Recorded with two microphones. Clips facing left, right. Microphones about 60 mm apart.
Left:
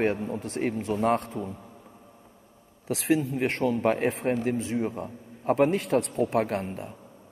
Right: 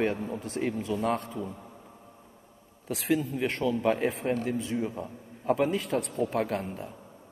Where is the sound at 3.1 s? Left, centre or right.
Left.